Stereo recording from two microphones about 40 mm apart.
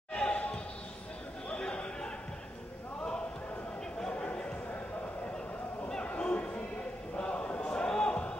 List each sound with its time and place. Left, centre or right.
0.1 s basketball bounce: left
1.5 s chatter: left
6.0 s a sound: left